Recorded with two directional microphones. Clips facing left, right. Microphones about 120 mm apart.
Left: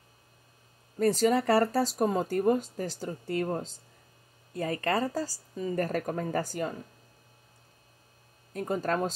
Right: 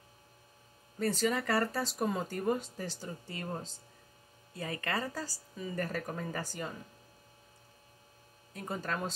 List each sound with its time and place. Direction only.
0.9 s speech: 40° left (ahead or behind); by 3.6 s 55° left (ahead or behind)
4.6 s speech: 40° left (ahead or behind)
8.5 s speech: 45° left (ahead or behind)